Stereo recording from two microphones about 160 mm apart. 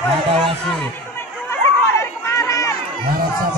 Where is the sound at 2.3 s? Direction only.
20° left (ahead or behind).